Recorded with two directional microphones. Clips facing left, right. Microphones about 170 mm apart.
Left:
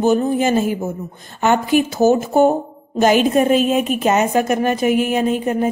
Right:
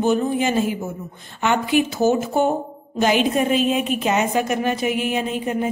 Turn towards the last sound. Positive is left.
turn(degrees=45)  # may be behind; listen again after turning